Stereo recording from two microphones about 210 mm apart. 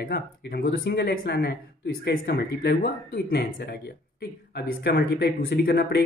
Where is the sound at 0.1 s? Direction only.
45° left (ahead or behind).